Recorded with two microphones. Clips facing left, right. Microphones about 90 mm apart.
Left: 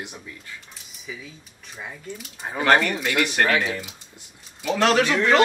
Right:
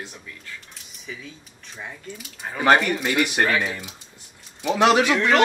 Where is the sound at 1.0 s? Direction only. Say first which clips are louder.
Even; 5° left (ahead or behind).